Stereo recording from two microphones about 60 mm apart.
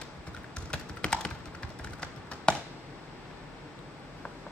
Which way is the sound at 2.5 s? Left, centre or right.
Centre.